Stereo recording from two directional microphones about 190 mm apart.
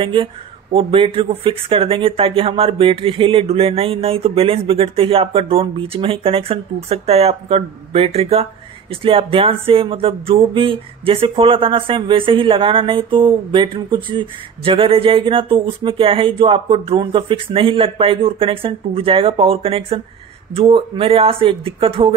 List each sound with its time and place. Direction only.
0.0 s speech: 25° right (ahead or behind)